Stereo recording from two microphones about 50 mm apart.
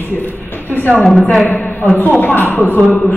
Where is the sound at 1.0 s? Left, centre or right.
Centre.